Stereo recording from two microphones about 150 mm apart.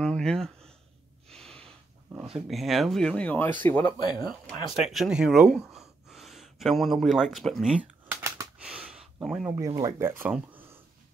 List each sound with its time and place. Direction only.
0.0 s a sound: 5° left (ahead or behind)
1.3 s snort: 5° left (ahead or behind)
2.3 s speech: centre (ahead or behind)
4.0 s speech: 30° left (ahead or behind)
4.3 s speech: centre (ahead or behind)
8.5 s a sound: 10° right (ahead or behind)
9.8 s speech: 20° right (ahead or behind)